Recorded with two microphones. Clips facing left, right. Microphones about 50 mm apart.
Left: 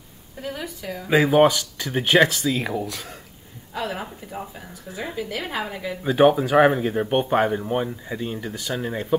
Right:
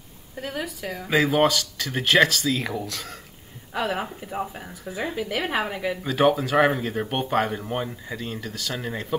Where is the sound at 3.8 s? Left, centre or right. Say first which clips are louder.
Right 3 dB; right.